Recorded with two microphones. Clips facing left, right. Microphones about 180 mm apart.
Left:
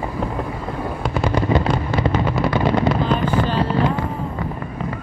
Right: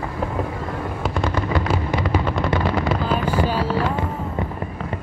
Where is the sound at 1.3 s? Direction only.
20° left (ahead or behind).